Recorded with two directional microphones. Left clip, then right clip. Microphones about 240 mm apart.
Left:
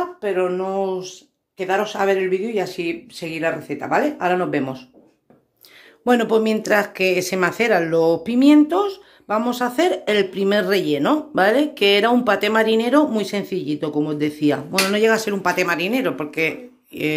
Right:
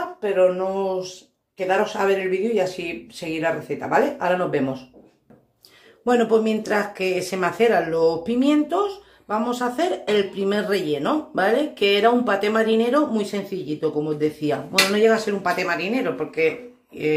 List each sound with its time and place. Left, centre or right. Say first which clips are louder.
0.2 s speech: right 4 dB; left
6.0 s speech: left 1 dB; left